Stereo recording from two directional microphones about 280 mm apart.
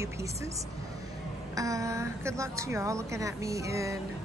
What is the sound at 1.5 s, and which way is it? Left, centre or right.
A woman's voice, centre.